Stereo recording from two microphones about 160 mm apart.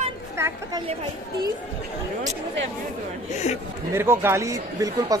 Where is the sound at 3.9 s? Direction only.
15° right (ahead or behind).